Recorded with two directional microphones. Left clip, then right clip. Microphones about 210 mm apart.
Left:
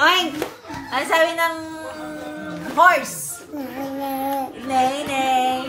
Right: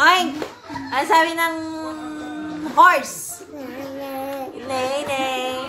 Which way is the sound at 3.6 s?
Centre (ahead or behind).